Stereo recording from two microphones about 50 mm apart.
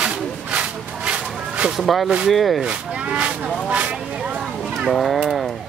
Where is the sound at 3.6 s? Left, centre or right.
Right.